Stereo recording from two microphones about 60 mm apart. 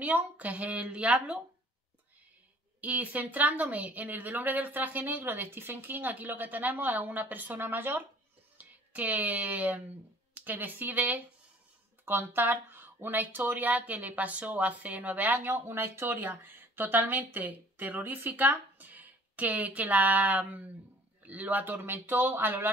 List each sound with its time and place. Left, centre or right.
0.0 s speech: right
2.8 s a man's voice: right